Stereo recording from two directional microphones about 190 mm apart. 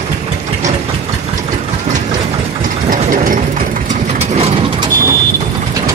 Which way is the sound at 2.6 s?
40° right (ahead or behind).